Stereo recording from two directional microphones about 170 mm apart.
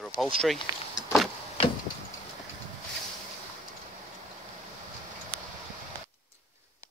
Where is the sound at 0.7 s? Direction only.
20° right (ahead or behind).